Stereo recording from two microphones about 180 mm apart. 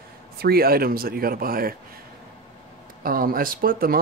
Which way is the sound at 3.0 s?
55° right (ahead or behind).